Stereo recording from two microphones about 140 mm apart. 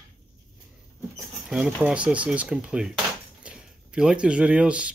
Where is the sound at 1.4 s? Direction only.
5° right (ahead or behind).